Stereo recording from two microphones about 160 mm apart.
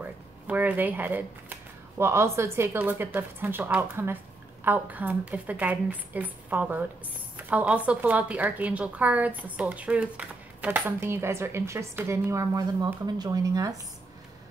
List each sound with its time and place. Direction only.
0.0 s a woman's voice: 10° right (ahead or behind)